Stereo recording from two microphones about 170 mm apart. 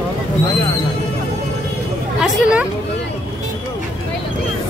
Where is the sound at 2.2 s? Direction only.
Centre (ahead or behind).